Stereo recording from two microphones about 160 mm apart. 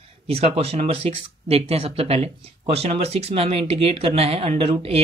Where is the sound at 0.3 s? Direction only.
40° right (ahead or behind).